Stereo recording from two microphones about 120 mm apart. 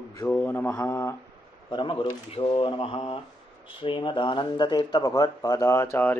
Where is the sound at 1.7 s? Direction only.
45° left (ahead or behind).